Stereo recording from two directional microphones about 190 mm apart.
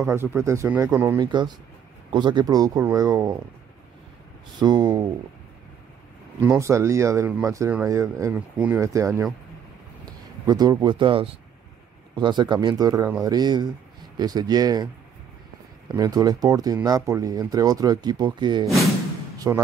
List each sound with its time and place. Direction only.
0.0 s speech: 15° right (ahead or behind)
4.6 s speech: 20° right (ahead or behind)
6.4 s speech: 15° right (ahead or behind)
16.0 s speech: 20° right (ahead or behind)